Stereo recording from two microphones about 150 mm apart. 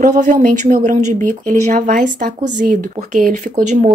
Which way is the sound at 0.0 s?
60° right (ahead or behind).